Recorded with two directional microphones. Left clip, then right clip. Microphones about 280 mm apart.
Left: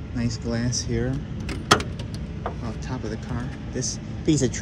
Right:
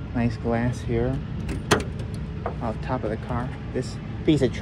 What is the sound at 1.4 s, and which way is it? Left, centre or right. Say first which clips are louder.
Vehicle: left 3 dB; centre.